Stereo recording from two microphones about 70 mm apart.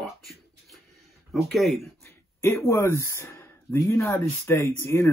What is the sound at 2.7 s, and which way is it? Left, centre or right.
Speech, left.